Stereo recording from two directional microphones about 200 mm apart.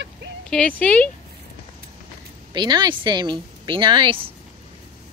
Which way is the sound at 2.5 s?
20° right (ahead or behind).